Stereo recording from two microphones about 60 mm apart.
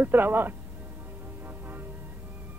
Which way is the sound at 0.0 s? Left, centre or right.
Right.